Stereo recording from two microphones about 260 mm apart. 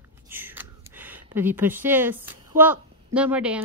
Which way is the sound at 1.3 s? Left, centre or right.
Centre.